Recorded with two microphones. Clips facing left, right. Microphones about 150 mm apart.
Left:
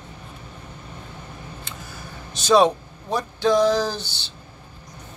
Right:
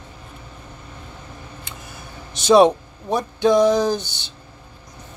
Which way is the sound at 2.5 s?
20° right (ahead or behind).